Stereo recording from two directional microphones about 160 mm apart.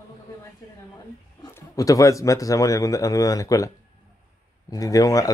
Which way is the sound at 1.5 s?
20° left (ahead or behind).